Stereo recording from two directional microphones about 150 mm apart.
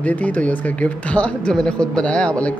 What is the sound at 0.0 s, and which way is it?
Speech, 10° left (ahead or behind).